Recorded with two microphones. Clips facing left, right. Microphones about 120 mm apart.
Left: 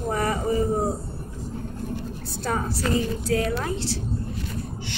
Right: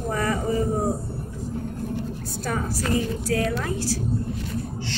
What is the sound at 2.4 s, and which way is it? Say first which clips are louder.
A woman's voice: left 1 dB; 30° left (ahead or behind).